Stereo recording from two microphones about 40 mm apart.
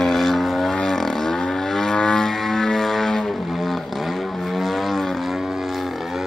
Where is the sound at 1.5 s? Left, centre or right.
Centre.